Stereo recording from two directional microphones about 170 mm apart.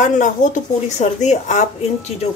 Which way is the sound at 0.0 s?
50° left (ahead or behind).